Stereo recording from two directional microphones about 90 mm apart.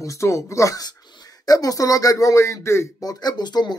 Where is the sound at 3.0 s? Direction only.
45° left (ahead or behind).